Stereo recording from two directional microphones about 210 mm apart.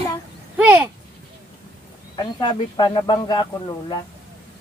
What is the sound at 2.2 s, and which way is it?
A woman's voice, 20° left (ahead or behind).